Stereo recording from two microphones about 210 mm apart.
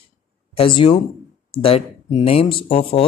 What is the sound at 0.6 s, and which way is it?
Speech, 25° left (ahead or behind).